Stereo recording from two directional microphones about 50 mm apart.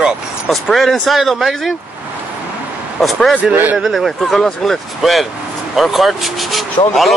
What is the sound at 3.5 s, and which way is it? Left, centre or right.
Speech, right.